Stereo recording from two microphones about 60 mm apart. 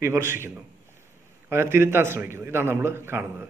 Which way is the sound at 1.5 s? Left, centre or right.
Right.